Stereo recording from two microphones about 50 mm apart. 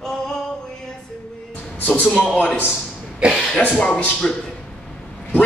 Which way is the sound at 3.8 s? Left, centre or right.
Centre.